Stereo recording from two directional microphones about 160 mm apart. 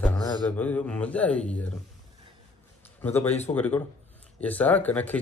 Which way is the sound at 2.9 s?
10° left (ahead or behind).